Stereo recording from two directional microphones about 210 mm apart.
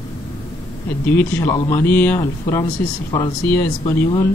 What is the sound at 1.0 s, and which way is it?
Speech, 10° left (ahead or behind).